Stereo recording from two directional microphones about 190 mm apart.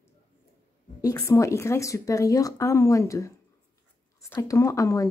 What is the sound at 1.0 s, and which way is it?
Speech, 15° left (ahead or behind).